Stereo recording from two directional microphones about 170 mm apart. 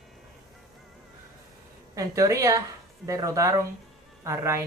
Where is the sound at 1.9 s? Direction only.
20° right (ahead or behind).